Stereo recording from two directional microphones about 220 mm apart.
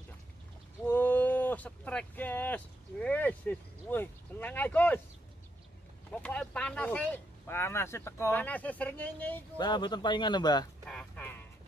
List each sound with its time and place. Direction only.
0.8 s speech: 10° left (ahead or behind)
6.1 s speech: 5° left (ahead or behind)
9.6 s speech: 20° left (ahead or behind)
10.9 s a sound: 5° left (ahead or behind)